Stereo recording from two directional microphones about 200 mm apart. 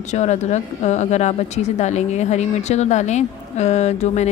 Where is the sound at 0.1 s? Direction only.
35° left (ahead or behind).